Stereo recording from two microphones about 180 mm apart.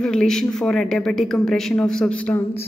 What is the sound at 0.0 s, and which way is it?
A woman's voice, 5° left (ahead or behind).